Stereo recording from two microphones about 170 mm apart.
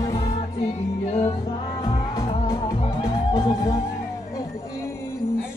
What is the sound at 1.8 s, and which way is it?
Music, 25° left (ahead or behind).